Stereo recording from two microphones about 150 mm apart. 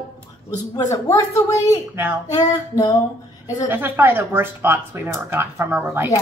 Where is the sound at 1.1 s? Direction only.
20° left (ahead or behind).